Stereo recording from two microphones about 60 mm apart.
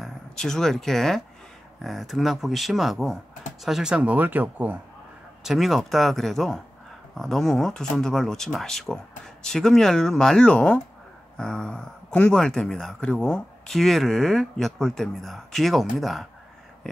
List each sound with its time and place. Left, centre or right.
0.4 s speech: centre
3.9 s speech: right
5.4 s speech: centre